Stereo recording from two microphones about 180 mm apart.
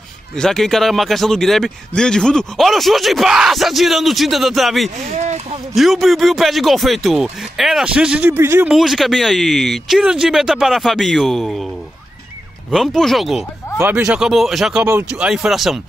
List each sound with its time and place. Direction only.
0.4 s speech: centre (ahead or behind)
5.1 s a sound: 35° right (ahead or behind)
5.8 s speech: centre (ahead or behind)
12.7 s speech: centre (ahead or behind)